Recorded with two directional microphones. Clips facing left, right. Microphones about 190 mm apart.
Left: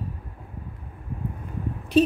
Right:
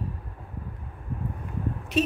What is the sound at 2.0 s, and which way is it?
Speech, 30° left (ahead or behind).